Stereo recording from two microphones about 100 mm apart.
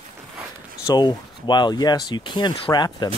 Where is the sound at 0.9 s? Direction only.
45° left (ahead or behind).